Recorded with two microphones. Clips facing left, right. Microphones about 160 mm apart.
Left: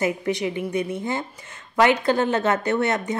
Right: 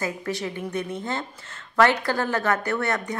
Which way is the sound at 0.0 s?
20° left (ahead or behind).